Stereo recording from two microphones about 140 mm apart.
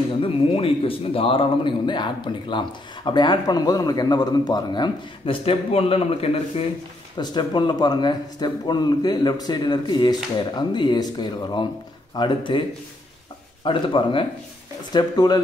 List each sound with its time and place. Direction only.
0.2 s speech: 40° left (ahead or behind)
7.2 s speech: 30° left (ahead or behind)
13.7 s speech: 35° left (ahead or behind)